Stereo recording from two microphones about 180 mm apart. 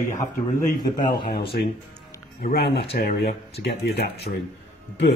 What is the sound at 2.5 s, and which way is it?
Speech, 60° left (ahead or behind).